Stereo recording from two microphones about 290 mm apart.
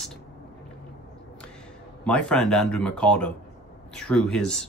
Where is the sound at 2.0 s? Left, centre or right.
Centre.